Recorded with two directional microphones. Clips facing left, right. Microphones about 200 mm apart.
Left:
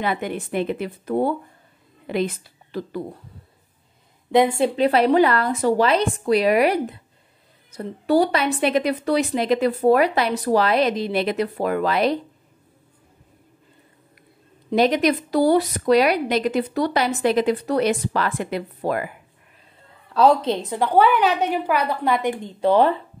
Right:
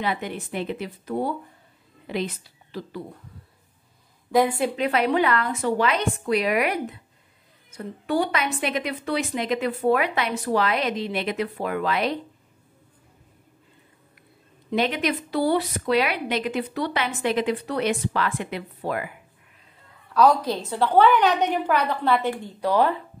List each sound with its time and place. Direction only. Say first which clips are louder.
0.0 s a woman's voice: left 3 dB; 50° left (ahead or behind)
4.3 s a woman's voice: left 3 dB; 25° left (ahead or behind)
14.7 s a woman's voice: left 6 dB; 40° left (ahead or behind)
20.2 s a woman's voice: left 2 dB; 25° left (ahead or behind)